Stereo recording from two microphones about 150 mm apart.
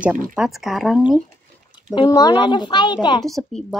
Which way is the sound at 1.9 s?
25° left (ahead or behind).